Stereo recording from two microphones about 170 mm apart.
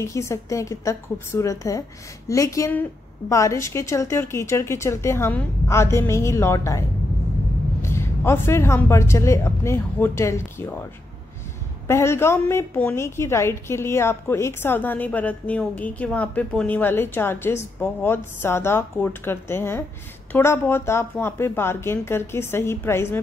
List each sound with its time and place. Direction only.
0.0 s a woman's voice: 15° left (ahead or behind)
7.8 s a woman's voice: 15° left (ahead or behind)
11.9 s a woman's voice: 15° left (ahead or behind)